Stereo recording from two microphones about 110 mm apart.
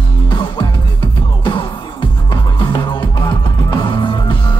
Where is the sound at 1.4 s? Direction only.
50° left (ahead or behind).